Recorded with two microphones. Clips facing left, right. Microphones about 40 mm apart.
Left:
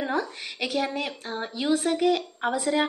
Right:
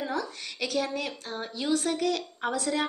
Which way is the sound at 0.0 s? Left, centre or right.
Left.